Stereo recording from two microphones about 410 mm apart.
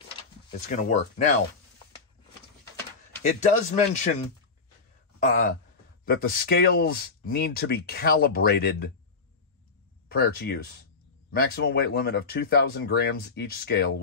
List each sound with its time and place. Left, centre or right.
0.5 s speech: left
3.2 s a man's voice: centre
6.0 s speech: left
10.0 s speech: left